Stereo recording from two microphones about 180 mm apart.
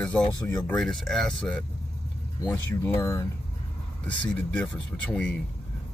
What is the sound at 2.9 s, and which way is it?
Speech, 15° left (ahead or behind).